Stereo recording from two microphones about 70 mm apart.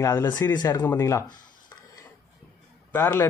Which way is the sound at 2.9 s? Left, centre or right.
Left.